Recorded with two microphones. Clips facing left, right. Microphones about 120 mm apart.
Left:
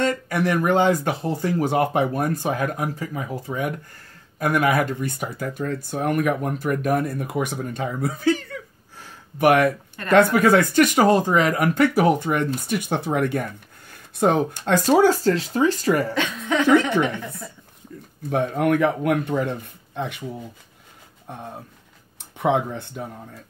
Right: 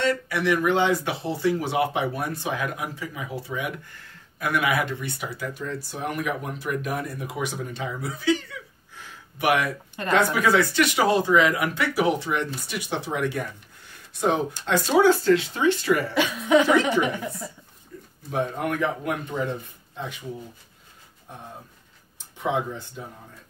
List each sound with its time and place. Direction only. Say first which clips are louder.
0.0 s speech: left 2 dB; 45° left (ahead or behind)
16.2 s a woman's voice: right 3 dB; 10° right (ahead or behind)
18.3 s speech: left 6 dB; 60° left (ahead or behind)
21.3 s speech: left 5 dB; 60° left (ahead or behind)